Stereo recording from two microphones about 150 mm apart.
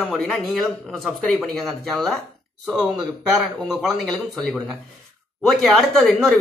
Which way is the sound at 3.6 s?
Centre (ahead or behind).